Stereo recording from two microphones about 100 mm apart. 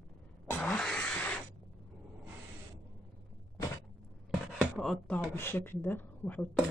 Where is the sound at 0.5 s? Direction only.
5° left (ahead or behind).